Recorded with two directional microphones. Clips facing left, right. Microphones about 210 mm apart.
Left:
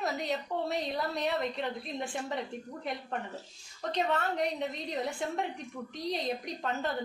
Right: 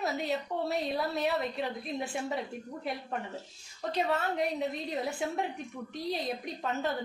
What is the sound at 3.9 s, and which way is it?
Speech, centre (ahead or behind).